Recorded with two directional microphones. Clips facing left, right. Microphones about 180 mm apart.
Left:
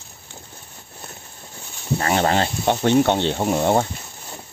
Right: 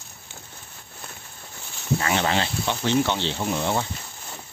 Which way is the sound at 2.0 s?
45° left (ahead or behind).